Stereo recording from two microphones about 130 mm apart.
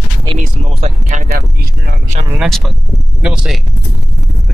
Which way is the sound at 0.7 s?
55° right (ahead or behind).